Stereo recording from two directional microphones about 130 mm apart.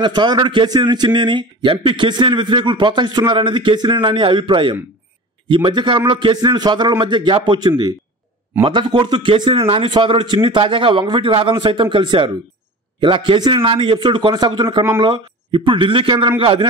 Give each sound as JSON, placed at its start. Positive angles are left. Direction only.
{"t": 0.0, "sound": "a man's voice", "side_deg": -35}